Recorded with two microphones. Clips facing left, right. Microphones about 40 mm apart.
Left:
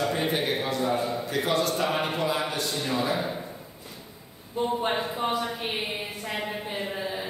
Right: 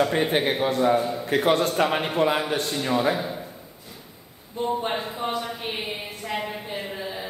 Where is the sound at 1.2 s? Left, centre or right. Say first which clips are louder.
Right 5 dB; right.